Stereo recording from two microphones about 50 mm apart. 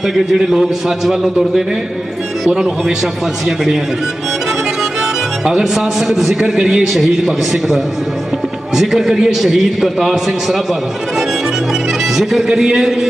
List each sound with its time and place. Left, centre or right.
0.0 s a man's voice: centre
3.4 s a man's voice: centre
5.4 s a man's voice: centre